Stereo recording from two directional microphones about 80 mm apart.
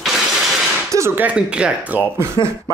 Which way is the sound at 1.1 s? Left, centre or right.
Centre.